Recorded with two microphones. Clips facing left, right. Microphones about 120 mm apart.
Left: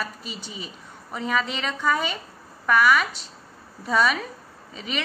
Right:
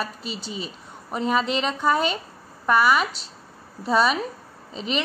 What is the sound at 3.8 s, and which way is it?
Speech, 25° right (ahead or behind).